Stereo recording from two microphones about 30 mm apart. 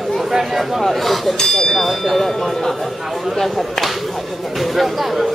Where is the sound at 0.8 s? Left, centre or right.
Centre.